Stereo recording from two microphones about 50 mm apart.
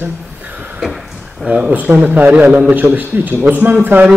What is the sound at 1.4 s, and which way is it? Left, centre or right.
A man's voice, right.